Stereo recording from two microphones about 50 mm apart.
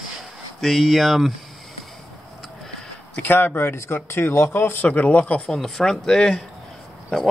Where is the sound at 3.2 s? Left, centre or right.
Left.